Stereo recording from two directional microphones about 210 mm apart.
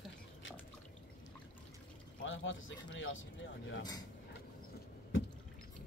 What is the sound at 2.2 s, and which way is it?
Speech, 65° left (ahead or behind).